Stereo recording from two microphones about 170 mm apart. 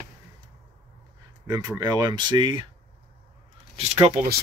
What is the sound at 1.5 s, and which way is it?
Speech, 25° right (ahead or behind).